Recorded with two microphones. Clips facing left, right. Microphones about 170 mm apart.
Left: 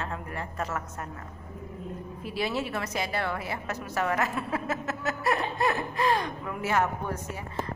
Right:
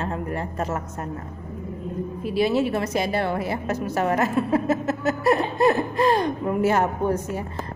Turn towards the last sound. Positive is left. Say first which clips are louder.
# right 10 dB
turn(degrees=-35)  # may be behind; listen again after turning